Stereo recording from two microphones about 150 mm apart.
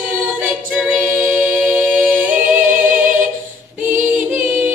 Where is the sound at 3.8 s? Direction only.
10° right (ahead or behind).